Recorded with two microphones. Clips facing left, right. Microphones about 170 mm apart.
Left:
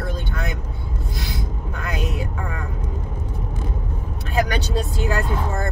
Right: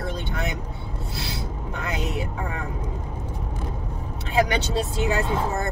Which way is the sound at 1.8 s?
25° right (ahead or behind).